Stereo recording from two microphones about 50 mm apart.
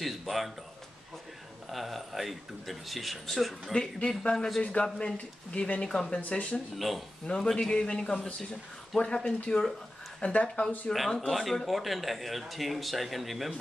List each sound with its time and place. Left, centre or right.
0.0 s speech: centre
1.7 s speech: centre
3.7 s speech: centre
6.2 s speech: left
7.2 s speech: centre
10.2 s speech: left
11.1 s speech: centre